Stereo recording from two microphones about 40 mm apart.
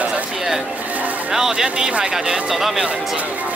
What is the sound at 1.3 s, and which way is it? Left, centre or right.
Music, centre.